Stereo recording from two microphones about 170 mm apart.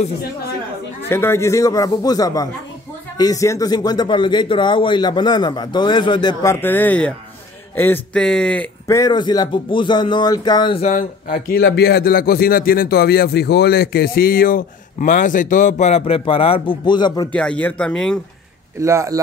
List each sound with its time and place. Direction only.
1.0 s speech: 15° left (ahead or behind)
8.8 s speech: 20° left (ahead or behind)
10.8 s speech: 50° left (ahead or behind); by 17.3 s 25° left (ahead or behind)
17.3 s speech: 5° left (ahead or behind)
18.8 s speech: 15° right (ahead or behind)